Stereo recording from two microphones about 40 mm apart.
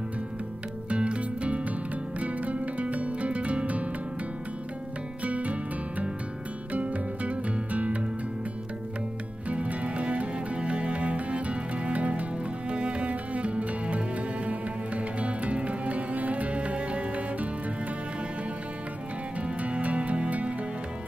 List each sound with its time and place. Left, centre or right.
0.8 s music: right
5.2 s music: right
9.5 s music: right
19.4 s music: right